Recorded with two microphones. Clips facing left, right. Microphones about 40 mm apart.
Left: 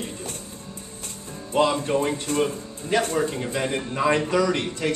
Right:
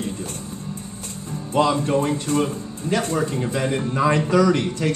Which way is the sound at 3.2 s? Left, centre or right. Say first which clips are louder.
Right 2 dB; centre.